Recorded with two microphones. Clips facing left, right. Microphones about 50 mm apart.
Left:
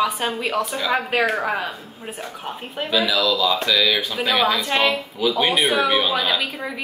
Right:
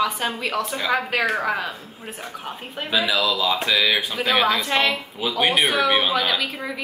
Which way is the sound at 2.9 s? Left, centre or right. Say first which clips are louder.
Left 1 dB; right.